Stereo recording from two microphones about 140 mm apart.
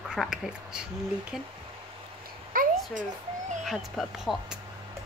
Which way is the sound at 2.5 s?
75° right (ahead or behind).